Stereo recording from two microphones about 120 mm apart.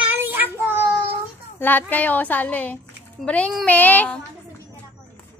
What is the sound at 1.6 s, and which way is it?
Speech, 15° left (ahead or behind).